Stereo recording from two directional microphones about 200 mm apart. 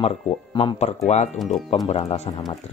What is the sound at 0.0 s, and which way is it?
Speech, 30° left (ahead or behind).